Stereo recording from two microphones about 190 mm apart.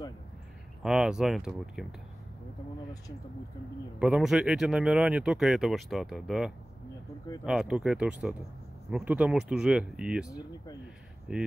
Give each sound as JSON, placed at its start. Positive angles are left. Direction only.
{"t": 0.8, "sound": "speech", "side_deg": -5}
{"t": 4.0, "sound": "speech", "side_deg": -5}
{"t": 10.2, "sound": "speech", "side_deg": 20}
{"t": 11.3, "sound": "speech", "side_deg": 0}